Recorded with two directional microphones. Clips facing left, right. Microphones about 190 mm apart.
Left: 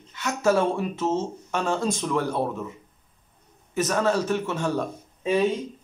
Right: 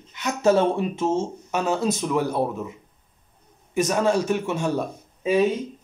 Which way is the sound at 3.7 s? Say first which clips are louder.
Right 2 dB; 15° right (ahead or behind).